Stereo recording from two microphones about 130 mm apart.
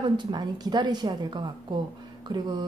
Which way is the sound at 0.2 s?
35° right (ahead or behind).